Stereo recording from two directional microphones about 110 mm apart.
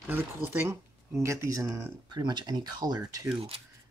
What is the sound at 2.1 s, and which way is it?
Speech, 40° right (ahead or behind).